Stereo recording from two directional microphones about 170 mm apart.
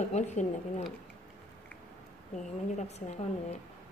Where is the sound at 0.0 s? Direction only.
45° left (ahead or behind).